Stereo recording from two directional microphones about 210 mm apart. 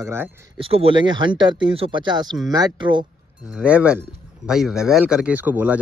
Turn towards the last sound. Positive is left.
turn(degrees=-10)  # may be behind; listen again after turning